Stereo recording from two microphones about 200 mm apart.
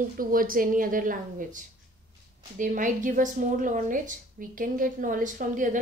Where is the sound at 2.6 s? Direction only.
40° right (ahead or behind).